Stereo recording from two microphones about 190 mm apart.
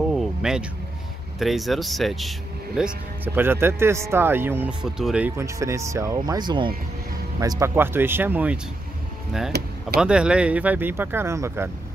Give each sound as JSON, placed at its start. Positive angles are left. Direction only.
{"t": 0.1, "sound": "a sound", "side_deg": 0}
{"t": 1.4, "sound": "speech", "side_deg": 0}
{"t": 3.3, "sound": "speech", "side_deg": -10}
{"t": 9.5, "sound": "speech", "side_deg": -60}
{"t": 9.9, "sound": "speech", "side_deg": -5}